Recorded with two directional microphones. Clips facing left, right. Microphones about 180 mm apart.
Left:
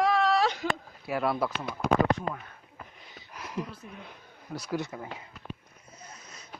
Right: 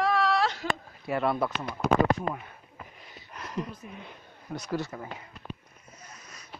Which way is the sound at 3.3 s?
5° left (ahead or behind).